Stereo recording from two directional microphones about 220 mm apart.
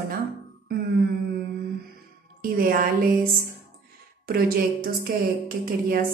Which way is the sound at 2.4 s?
40° right (ahead or behind).